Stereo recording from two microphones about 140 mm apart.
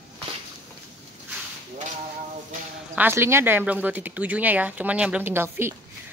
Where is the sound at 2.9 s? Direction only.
15° right (ahead or behind).